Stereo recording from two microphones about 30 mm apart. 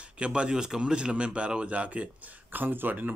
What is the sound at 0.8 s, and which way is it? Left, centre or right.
A man's voice, right.